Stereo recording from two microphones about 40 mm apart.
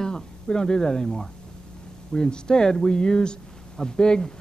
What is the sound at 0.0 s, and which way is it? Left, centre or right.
A woman's voice, centre.